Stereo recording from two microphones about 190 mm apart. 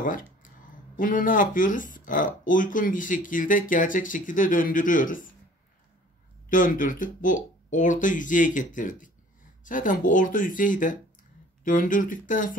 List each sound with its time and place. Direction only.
0.0 s speech: 45° left (ahead or behind)
6.5 s speech: 45° left (ahead or behind)